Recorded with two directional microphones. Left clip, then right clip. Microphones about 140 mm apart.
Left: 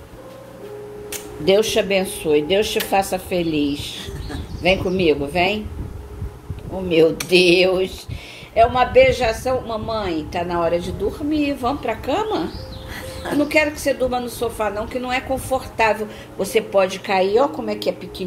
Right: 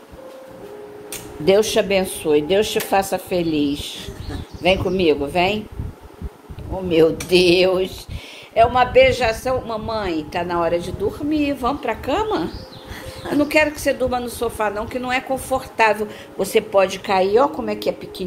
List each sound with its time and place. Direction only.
1.6 s a man's voice: 15° right (ahead or behind)
6.9 s a man's voice: 10° right (ahead or behind)
12.9 s a sound: centre (ahead or behind)
13.4 s a man's voice: 15° right (ahead or behind)